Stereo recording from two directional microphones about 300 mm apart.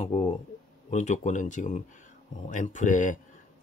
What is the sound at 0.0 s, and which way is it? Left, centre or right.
Speech, left.